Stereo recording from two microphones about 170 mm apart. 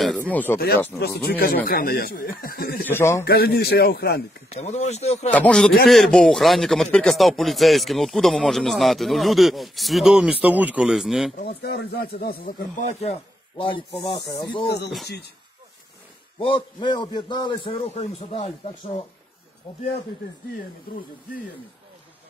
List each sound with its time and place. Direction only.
0.3 s a man's voice: 10° left (ahead or behind)
0.9 s speech: 70° left (ahead or behind)
2.9 s a man's voice: 15° left (ahead or behind)
3.3 s a man's voice: 65° left (ahead or behind)
4.5 s a man's voice: 40° left (ahead or behind)
5.3 s speech: 5° left (ahead or behind)
11.4 s speech: 70° left (ahead or behind)
13.6 s speech: 30° left (ahead or behind)
16.3 s a man's voice: 30° left (ahead or behind)